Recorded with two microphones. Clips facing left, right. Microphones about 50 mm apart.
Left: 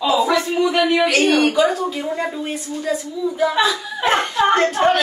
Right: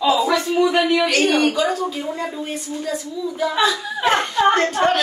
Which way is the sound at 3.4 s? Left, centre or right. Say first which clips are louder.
Left 1 dB; centre.